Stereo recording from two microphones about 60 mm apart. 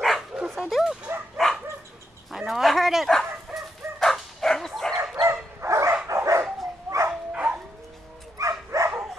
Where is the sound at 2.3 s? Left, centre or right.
Centre.